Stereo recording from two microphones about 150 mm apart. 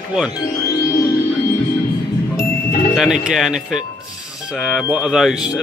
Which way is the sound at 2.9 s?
5° right (ahead or behind).